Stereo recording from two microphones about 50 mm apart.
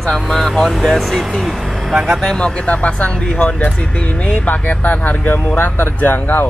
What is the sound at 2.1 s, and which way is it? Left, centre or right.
Speech, centre.